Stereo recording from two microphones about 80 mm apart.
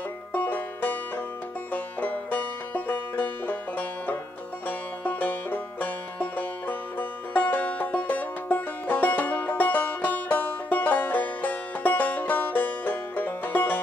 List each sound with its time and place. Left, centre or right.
0.3 s banjo: left
1.7 s music: left